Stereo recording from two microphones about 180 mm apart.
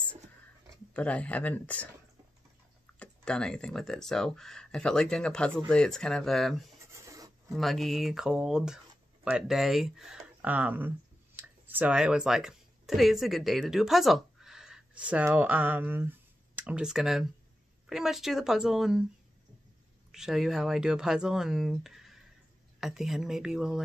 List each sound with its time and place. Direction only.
0.9 s speech: 5° left (ahead or behind)
3.0 s speech: 5° left (ahead or behind)
6.9 s a sound: 20° right (ahead or behind)
7.5 s speech: centre (ahead or behind)
20.1 s speech: centre (ahead or behind)